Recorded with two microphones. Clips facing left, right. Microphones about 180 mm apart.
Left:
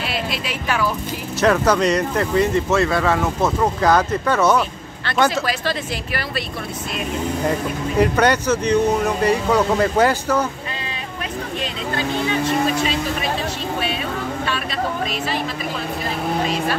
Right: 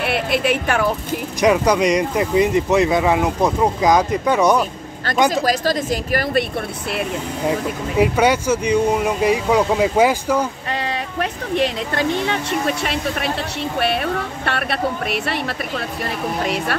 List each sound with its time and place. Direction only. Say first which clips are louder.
0.0 s speech: right 6 dB; 60° right (ahead or behind)
1.4 s speech: right 1 dB; 15° right (ahead or behind)
5.3 s speech: right 4 dB; 40° right (ahead or behind)
8.0 s speech: right 1 dB; 10° right (ahead or behind)
11.5 s speech: right 8 dB; 70° right (ahead or behind)